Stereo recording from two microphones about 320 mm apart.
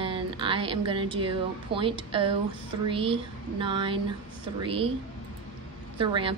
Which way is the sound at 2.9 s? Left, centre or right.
Centre.